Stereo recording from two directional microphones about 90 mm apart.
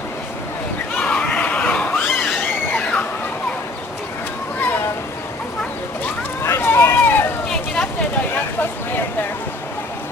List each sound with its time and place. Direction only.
0.9 s screaming: 15° left (ahead or behind)
6.4 s run: 30° left (ahead or behind)
7.4 s a sound: 5° left (ahead or behind)